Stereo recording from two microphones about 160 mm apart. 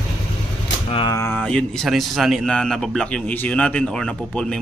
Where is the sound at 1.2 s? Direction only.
15° left (ahead or behind).